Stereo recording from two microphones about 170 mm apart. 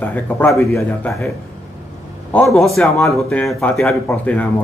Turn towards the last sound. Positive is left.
turn(degrees=10)  # may be behind; listen again after turning